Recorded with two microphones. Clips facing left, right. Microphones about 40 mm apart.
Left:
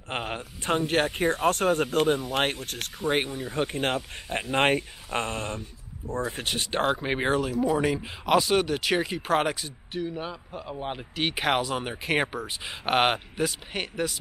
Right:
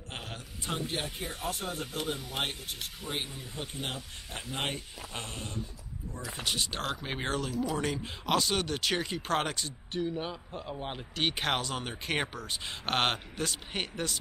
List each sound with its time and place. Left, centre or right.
0.1 s a man's voice: left
0.8 s speech: left
1.1 s speech: left; by 14.2 s centre